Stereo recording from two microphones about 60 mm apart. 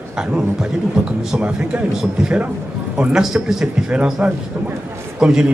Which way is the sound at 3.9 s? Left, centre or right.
Centre.